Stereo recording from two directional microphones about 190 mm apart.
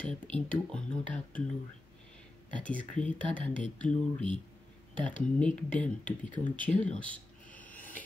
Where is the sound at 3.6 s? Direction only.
5° left (ahead or behind).